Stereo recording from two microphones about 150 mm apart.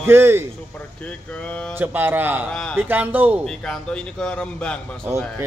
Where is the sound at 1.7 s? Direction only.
15° right (ahead or behind).